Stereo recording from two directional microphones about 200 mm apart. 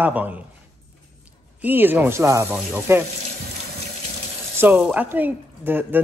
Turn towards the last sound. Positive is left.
turn(degrees=-10)  # may be behind; listen again after turning